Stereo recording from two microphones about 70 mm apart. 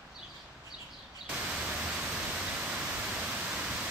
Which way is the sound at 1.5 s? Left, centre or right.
Right.